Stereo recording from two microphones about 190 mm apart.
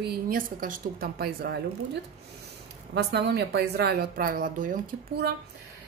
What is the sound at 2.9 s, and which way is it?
A woman's voice, 60° right (ahead or behind).